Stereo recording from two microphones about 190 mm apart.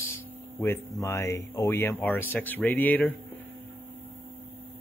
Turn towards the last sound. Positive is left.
turn(degrees=10)  # may be behind; listen again after turning